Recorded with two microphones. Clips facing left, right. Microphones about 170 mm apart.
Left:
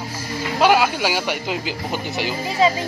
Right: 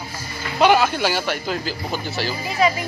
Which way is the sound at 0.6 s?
10° left (ahead or behind).